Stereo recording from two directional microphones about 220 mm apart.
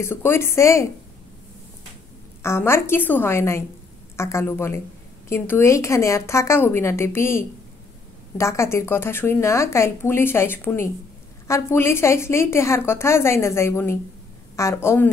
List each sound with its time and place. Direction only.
0.0 s speech: 10° left (ahead or behind)
2.4 s speech: 10° left (ahead or behind)